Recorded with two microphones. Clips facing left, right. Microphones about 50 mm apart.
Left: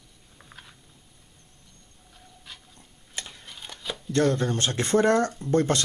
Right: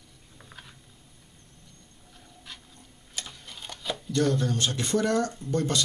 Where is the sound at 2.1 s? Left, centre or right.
Centre.